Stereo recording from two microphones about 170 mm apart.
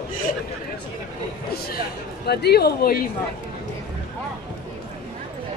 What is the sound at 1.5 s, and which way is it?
Speech, 65° left (ahead or behind).